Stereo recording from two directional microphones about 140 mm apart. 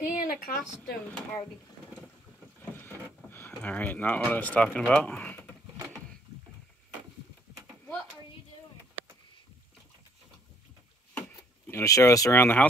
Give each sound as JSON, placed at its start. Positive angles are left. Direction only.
{"t": 0.0, "sound": "speech", "side_deg": 75}
{"t": 2.7, "sound": "speech", "side_deg": 15}
{"t": 11.1, "sound": "a sound", "side_deg": 10}
{"t": 11.8, "sound": "speech", "side_deg": 20}